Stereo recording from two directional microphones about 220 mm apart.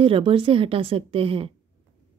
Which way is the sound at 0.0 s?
25° right (ahead or behind).